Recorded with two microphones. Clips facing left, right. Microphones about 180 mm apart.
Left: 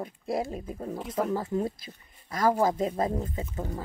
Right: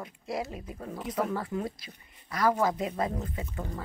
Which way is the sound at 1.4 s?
25° left (ahead or behind).